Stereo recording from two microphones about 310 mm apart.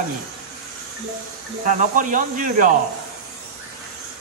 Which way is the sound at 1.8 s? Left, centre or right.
Right.